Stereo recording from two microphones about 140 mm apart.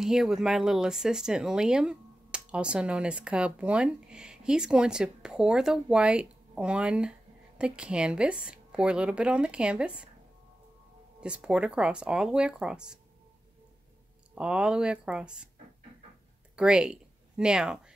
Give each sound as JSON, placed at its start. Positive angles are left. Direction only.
{"t": 0.0, "sound": "speech", "side_deg": -5}
{"t": 11.1, "sound": "speech", "side_deg": -5}
{"t": 14.3, "sound": "speech", "side_deg": -5}
{"t": 16.5, "sound": "speech", "side_deg": -5}